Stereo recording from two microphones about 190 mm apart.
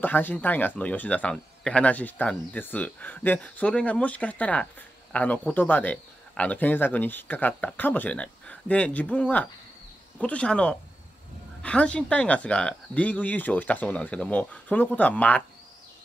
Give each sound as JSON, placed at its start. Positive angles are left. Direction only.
{"t": 0.0, "sound": "speech", "side_deg": 10}